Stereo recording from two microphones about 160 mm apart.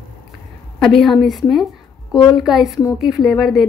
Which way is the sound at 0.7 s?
Centre (ahead or behind).